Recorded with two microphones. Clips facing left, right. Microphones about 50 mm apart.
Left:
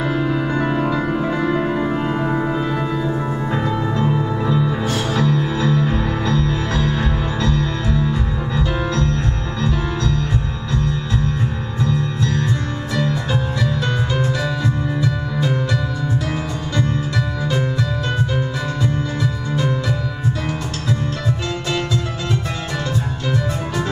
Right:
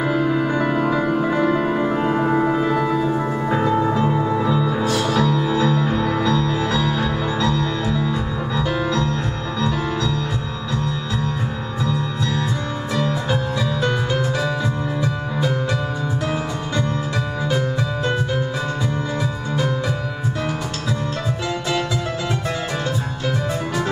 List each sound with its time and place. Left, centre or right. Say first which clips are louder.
0.4 s music: even; centre
2.3 s music: right 2 dB; centre
4.5 s music: even; left
4.8 s music: right 1 dB; left
5.6 s music: even; right